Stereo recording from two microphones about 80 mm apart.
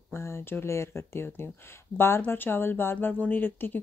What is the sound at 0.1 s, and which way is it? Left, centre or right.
Speech, left.